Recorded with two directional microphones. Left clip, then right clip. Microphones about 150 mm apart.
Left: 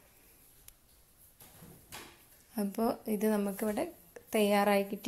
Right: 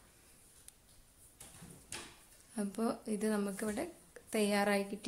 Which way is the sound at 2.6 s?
25° left (ahead or behind).